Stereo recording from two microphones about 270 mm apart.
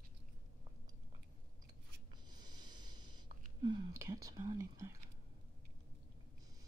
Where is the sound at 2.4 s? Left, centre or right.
Centre.